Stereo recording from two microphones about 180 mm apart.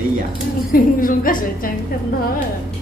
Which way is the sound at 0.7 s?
50° left (ahead or behind).